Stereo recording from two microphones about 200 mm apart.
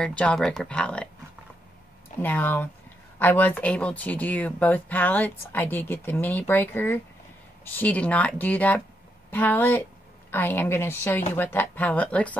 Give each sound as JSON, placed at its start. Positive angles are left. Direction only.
{"t": 0.0, "sound": "speech", "side_deg": 5}
{"t": 2.2, "sound": "speech", "side_deg": 10}